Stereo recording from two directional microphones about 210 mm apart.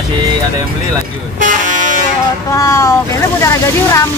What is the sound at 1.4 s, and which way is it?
Vehicle, 35° right (ahead or behind).